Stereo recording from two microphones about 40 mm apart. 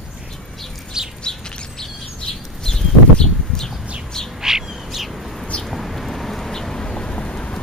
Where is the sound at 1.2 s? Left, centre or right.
Left.